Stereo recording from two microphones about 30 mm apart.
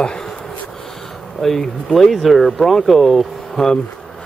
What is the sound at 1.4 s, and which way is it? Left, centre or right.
Speech, centre.